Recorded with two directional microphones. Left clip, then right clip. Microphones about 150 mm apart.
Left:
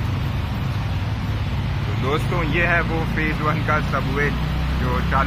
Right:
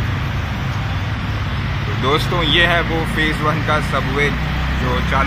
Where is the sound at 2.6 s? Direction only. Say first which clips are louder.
Right 4 dB; 30° right (ahead or behind).